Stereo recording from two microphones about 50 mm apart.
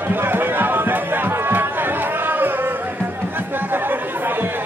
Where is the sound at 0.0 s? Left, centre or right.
Right.